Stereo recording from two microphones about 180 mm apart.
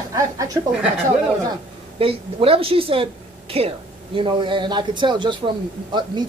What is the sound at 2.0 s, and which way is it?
A woman's voice, 30° right (ahead or behind).